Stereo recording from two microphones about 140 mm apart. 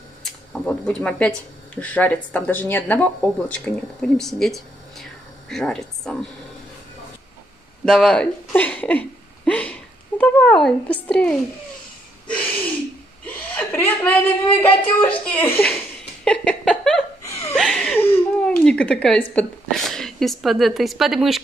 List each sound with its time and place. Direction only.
0.2 s a woman's voice: 5° left (ahead or behind)
7.8 s speech: 5° left (ahead or behind)
12.3 s a sound: 10° left (ahead or behind)
13.3 s chuckle: 10° left (ahead or behind)
15.0 s speech: 10° left (ahead or behind)
16.3 s a sound: 5° left (ahead or behind)
17.3 s chuckle: 20° left (ahead or behind)
17.6 s a sound: 5° left (ahead or behind)
18.0 s speech: 15° left (ahead or behind); by 21.4 s centre (ahead or behind)